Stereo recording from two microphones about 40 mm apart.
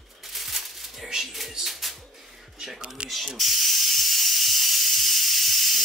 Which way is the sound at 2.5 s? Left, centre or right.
Centre.